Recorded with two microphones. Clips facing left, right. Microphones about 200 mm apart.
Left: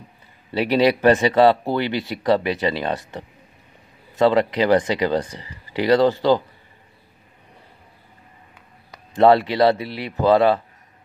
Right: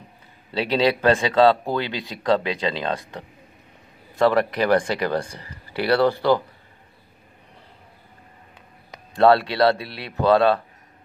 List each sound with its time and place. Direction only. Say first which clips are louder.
0.5 s speech: left 3 dB; 10° left (ahead or behind)
4.2 s speech: left 2 dB; 15° left (ahead or behind)
9.1 s speech: left 2 dB; 15° left (ahead or behind)